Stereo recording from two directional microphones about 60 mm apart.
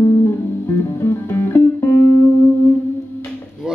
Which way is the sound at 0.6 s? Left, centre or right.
Left.